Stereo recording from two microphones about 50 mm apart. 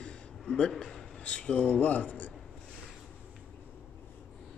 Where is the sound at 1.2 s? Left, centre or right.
Left.